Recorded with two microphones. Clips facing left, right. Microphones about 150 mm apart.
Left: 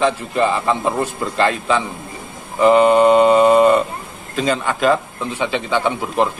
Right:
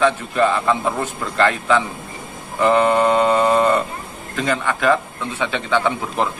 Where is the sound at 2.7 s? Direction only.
15° left (ahead or behind).